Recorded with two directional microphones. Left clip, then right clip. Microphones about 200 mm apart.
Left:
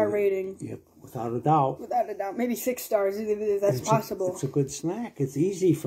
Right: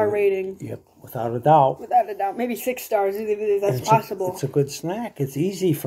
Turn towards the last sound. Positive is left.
turn(degrees=-25)  # may be behind; listen again after turning